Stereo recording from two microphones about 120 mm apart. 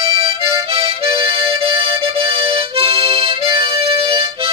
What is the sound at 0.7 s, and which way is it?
Harmonica, 50° right (ahead or behind).